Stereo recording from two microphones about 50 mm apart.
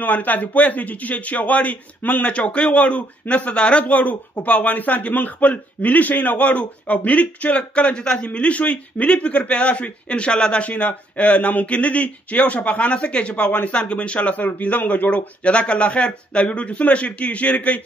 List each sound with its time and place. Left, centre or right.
0.0 s a man's voice: left; by 8.3 s centre
8.3 s a man's voice: left